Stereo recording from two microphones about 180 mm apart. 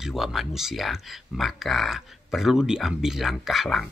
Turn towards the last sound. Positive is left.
turn(degrees=0)  # may be behind; listen again after turning